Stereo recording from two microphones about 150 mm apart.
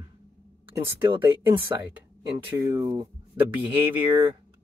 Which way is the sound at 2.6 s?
20° right (ahead or behind).